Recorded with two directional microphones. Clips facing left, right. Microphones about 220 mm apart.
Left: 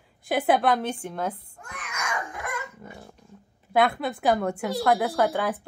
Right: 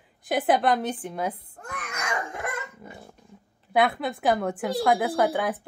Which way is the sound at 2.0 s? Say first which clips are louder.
Right 2 dB; 30° right (ahead or behind).